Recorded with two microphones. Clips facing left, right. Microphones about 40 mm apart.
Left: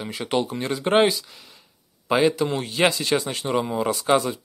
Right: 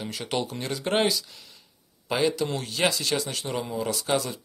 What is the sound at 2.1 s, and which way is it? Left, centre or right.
Speech, left.